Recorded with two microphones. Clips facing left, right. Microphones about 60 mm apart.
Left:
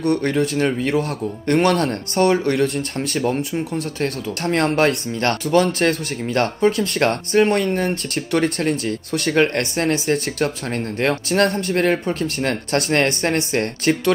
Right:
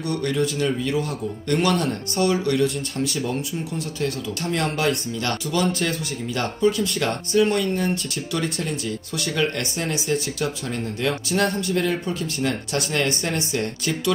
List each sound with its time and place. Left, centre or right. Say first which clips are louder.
0.0 s speech: left 5 dB; left